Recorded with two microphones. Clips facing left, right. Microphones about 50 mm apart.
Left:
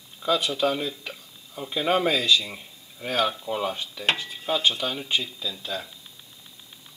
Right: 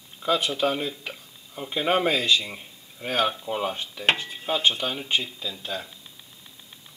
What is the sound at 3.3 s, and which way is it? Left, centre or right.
Dishes, centre.